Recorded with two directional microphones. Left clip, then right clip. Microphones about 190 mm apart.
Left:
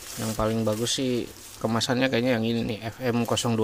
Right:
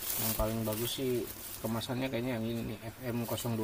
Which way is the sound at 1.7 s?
50° left (ahead or behind).